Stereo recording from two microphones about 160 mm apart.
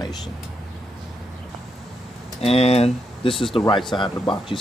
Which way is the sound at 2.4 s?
40° left (ahead or behind).